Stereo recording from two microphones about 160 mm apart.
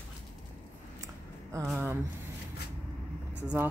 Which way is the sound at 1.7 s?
5° right (ahead or behind).